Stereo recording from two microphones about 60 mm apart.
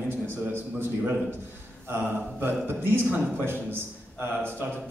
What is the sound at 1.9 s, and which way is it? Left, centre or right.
Speech, right.